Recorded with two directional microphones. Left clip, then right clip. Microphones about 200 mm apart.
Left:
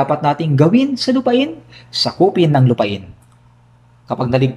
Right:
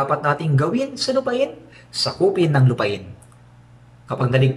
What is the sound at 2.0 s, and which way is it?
Speech, 35° left (ahead or behind).